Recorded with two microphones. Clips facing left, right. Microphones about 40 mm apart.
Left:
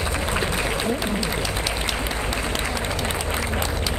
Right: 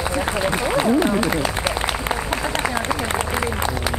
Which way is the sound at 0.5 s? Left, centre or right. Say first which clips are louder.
Right 5 dB; right.